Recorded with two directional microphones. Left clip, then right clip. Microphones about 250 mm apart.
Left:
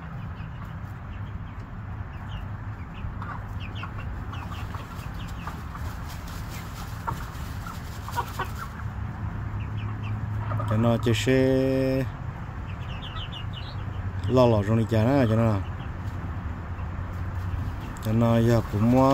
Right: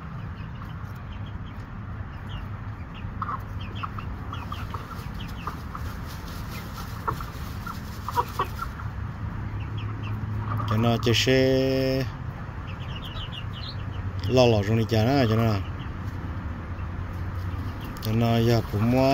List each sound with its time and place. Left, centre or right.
10.6 s speech: centre
14.2 s speech: centre
18.0 s speech: centre